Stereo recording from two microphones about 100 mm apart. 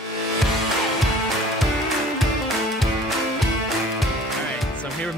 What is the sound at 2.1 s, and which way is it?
Music, centre (ahead or behind).